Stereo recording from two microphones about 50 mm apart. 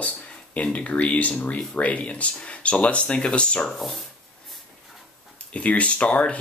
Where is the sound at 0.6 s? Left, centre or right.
Left.